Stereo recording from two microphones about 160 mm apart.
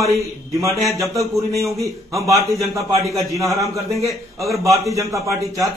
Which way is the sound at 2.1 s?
20° right (ahead or behind).